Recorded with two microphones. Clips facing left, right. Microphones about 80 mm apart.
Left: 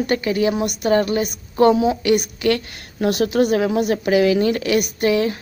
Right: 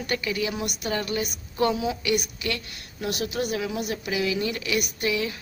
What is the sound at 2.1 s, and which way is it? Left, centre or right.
A woman's voice, left.